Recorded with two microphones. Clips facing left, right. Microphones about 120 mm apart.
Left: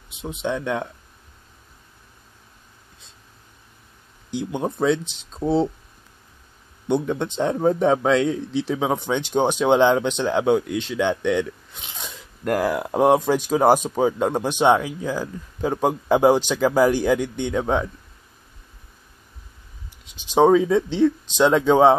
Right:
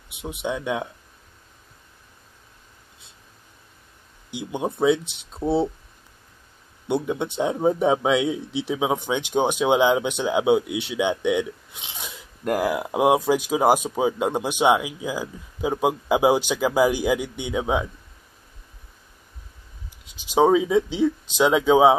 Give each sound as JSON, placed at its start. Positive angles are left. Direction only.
{"t": 0.3, "sound": "speech", "side_deg": -10}
{"t": 4.3, "sound": "speech", "side_deg": -10}
{"t": 6.9, "sound": "speech", "side_deg": -10}
{"t": 11.8, "sound": "biting", "side_deg": -15}
{"t": 12.1, "sound": "speech", "side_deg": -5}
{"t": 20.2, "sound": "speech", "side_deg": -10}